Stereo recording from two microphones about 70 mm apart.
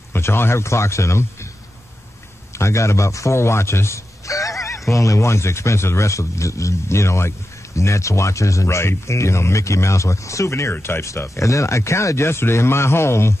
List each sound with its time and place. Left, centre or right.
0.1 s a man's voice: left
2.5 s speech: left